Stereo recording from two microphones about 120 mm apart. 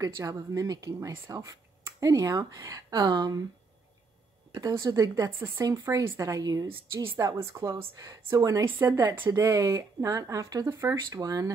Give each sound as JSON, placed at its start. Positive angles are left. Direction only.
{"t": 0.0, "sound": "speech", "side_deg": -30}
{"t": 4.6, "sound": "speech", "side_deg": -30}